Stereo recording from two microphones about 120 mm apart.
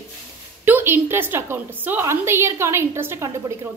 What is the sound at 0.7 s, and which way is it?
A woman's voice, 15° right (ahead or behind).